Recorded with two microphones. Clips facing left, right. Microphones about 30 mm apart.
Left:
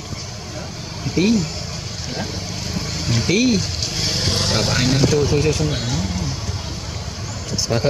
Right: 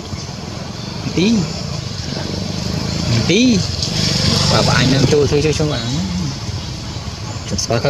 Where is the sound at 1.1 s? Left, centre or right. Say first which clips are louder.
Right 2 dB; right.